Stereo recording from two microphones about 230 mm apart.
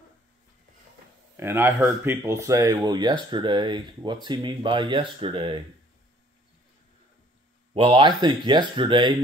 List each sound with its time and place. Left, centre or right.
1.3 s speech: centre
7.7 s speech: right